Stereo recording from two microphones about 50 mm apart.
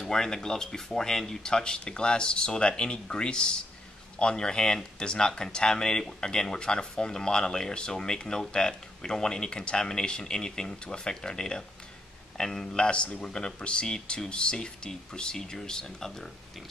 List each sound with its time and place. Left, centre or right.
0.0 s speech: centre